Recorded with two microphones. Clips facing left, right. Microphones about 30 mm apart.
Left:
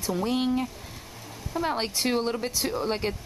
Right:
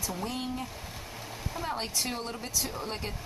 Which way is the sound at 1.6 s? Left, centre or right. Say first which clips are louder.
Left 6 dB; left.